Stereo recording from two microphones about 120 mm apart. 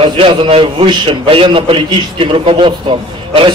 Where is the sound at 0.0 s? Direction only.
45° right (ahead or behind).